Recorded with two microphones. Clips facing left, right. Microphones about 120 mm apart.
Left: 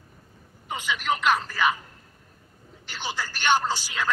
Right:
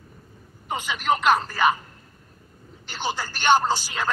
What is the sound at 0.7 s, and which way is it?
Speech, 45° right (ahead or behind).